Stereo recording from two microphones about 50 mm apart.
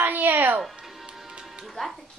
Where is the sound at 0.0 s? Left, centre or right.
Right.